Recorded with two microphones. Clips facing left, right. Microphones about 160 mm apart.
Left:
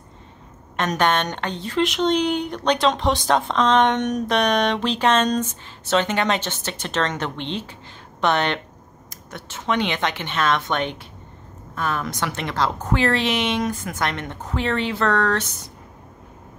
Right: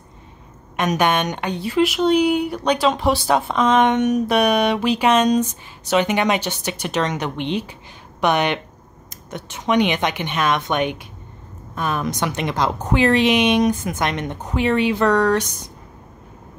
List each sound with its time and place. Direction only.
0.7 s speech: 10° right (ahead or behind)